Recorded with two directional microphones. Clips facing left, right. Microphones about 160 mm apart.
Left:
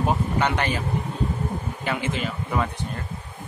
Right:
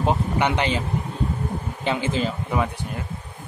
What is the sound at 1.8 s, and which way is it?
Speech, 25° right (ahead or behind).